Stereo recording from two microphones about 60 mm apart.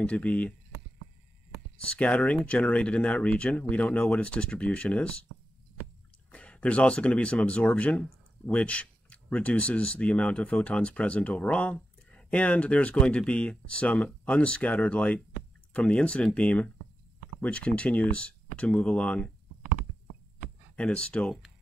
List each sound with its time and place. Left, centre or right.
0.0 s speech: left
1.8 s speech: left
6.3 s speech: centre
20.7 s speech: centre